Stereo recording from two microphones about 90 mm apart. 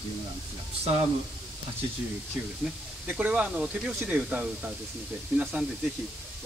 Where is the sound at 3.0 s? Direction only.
15° right (ahead or behind).